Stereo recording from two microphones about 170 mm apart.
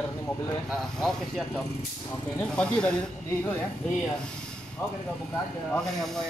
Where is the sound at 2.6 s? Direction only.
5° left (ahead or behind).